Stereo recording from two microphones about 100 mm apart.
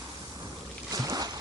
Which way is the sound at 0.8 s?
35° right (ahead or behind).